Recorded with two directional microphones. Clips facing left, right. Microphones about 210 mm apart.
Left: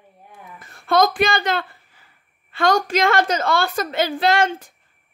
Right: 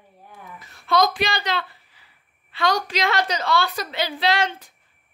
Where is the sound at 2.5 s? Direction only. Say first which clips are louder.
Left 5 dB; 50° left (ahead or behind).